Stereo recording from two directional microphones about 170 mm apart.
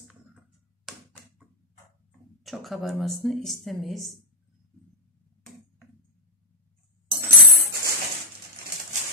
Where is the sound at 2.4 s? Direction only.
Centre (ahead or behind).